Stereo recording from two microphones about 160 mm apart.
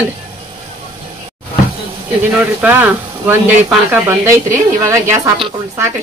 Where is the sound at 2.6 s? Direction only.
10° right (ahead or behind).